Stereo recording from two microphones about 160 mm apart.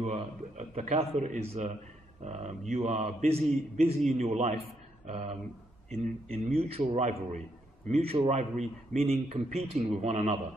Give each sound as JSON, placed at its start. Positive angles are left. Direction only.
{"t": 0.0, "sound": "a man's voice", "side_deg": -40}
{"t": 6.4, "sound": "a man's voice", "side_deg": -40}